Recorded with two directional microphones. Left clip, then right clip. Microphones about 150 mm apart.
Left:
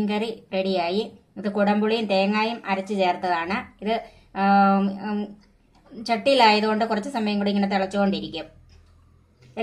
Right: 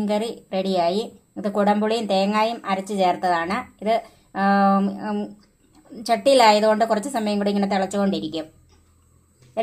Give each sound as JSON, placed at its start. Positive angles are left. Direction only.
{"t": 0.0, "sound": "a woman's voice", "side_deg": -70}